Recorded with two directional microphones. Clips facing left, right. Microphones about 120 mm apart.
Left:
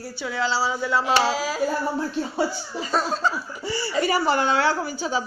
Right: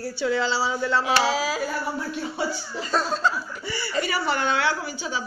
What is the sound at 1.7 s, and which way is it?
Speech, 30° left (ahead or behind).